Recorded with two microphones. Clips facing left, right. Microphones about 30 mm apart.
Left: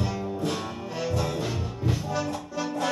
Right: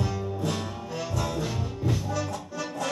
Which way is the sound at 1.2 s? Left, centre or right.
Centre.